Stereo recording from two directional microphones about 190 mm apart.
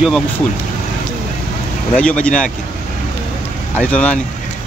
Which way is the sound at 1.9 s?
5° left (ahead or behind).